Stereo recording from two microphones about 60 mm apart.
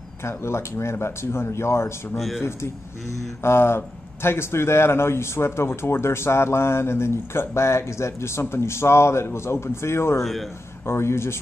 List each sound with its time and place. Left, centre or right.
0.2 s speech: left
2.1 s a man's voice: centre
2.4 s speech: left
10.2 s a man's voice: centre
10.9 s speech: left